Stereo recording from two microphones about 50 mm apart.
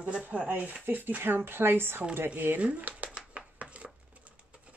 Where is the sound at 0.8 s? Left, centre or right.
Right.